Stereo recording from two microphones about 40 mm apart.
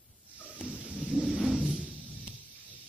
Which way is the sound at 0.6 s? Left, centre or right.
Right.